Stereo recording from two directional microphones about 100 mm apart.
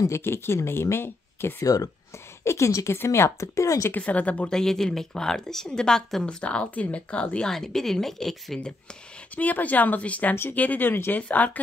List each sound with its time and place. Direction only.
0.0 s speech: 25° left (ahead or behind)
3.9 s speech: 15° left (ahead or behind)
9.3 s speech: 15° left (ahead or behind)